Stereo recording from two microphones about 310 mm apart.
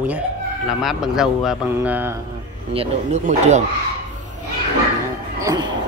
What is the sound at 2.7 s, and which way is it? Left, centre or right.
Speech, centre.